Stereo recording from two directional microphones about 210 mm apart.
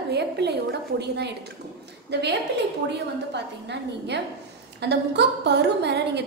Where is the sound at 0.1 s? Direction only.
55° right (ahead or behind).